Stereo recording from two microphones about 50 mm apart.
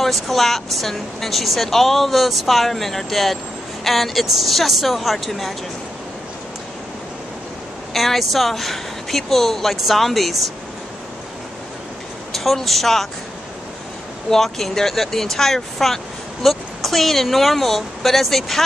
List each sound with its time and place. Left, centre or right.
0.0 s speech: centre
7.9 s speech: centre
12.3 s speech: centre
14.3 s speech: centre